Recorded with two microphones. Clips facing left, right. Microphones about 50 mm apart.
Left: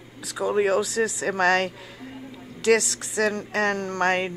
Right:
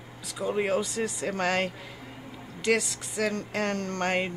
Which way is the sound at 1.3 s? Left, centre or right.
Left.